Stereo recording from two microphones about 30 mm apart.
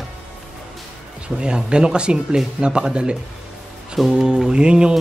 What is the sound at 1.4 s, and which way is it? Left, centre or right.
Speech, right.